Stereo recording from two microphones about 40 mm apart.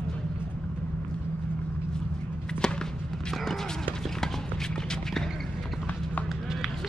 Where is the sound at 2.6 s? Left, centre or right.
Centre.